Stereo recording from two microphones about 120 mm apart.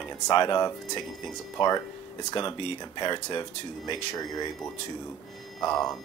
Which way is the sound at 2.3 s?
45° left (ahead or behind).